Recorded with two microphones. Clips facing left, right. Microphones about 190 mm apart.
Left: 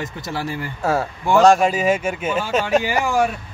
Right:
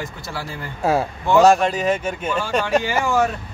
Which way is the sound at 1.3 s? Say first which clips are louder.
Even; 5° right (ahead or behind).